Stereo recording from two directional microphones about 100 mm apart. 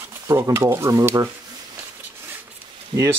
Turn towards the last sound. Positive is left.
turn(degrees=-60)  # may be behind; listen again after turning